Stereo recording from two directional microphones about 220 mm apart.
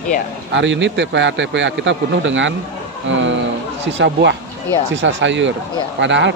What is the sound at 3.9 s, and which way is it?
Speech, 55° right (ahead or behind).